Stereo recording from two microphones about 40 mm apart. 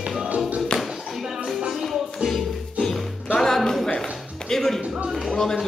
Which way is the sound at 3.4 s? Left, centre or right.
Centre.